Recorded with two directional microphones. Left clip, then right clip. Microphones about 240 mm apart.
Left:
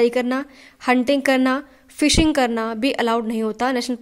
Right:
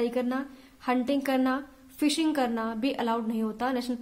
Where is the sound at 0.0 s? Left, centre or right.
Left.